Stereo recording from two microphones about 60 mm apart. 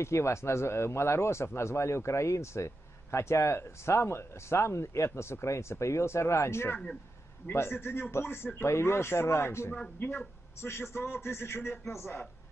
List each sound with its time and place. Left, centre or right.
0.0 s speech: left
9.9 s speech: left